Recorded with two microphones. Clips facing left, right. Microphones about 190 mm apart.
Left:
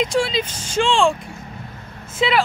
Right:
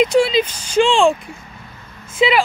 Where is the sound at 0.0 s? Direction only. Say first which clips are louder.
Right 6 dB; 15° right (ahead or behind).